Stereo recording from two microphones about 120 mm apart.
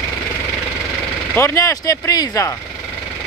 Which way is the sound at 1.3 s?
20° left (ahead or behind).